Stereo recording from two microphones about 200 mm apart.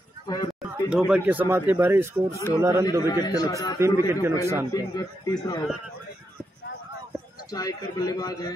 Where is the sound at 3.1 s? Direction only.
20° left (ahead or behind).